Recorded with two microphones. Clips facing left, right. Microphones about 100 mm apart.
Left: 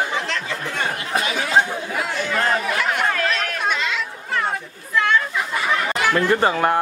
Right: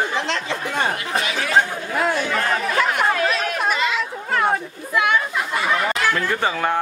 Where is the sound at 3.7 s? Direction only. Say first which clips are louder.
Right 2 dB; 5° right (ahead or behind).